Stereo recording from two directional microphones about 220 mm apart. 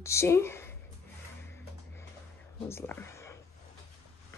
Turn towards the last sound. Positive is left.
turn(degrees=10)  # may be behind; listen again after turning